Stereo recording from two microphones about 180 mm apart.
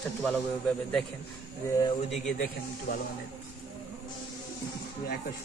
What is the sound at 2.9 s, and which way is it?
Speech, 65° left (ahead or behind).